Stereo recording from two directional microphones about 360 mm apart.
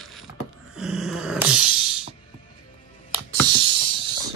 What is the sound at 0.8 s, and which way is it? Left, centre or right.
Dog, centre.